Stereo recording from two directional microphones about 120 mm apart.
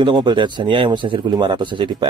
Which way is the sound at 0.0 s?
40° right (ahead or behind).